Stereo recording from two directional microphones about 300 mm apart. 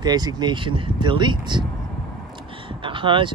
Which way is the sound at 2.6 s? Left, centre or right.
Centre.